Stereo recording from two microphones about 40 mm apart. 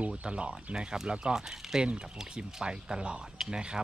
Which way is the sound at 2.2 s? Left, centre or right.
Centre.